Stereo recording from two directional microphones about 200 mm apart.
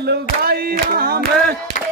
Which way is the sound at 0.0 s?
55° right (ahead or behind).